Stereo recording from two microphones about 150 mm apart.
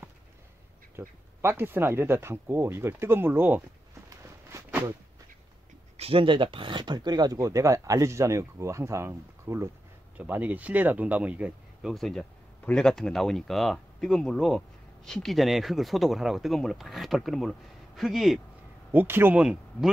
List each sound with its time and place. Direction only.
0.9 s speech: 15° right (ahead or behind)
4.6 s a sound: 15° right (ahead or behind)
5.9 s speech: 40° right (ahead or behind); by 18.4 s centre (ahead or behind)
18.9 s speech: 15° right (ahead or behind)